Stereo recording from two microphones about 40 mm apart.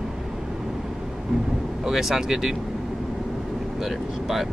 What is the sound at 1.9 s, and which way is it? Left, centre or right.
Speech, centre.